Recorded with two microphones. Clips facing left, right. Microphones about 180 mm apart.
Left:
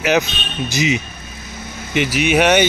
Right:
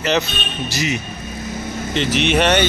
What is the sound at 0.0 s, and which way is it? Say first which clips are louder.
A man's voice: left 2 dB; 10° left (ahead or behind).